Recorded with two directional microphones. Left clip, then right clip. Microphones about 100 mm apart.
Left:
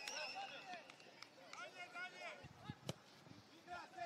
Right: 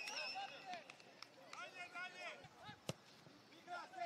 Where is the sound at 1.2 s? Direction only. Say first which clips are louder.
Right 1 dB; 15° right (ahead or behind).